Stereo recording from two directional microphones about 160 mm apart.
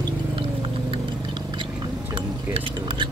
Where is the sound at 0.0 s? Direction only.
30° right (ahead or behind).